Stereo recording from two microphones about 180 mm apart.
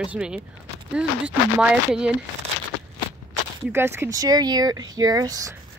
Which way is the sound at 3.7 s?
15° right (ahead or behind).